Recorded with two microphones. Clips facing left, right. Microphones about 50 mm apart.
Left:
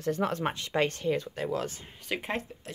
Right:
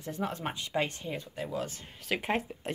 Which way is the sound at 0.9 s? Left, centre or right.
Left.